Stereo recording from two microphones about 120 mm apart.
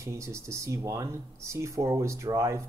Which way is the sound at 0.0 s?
25° right (ahead or behind).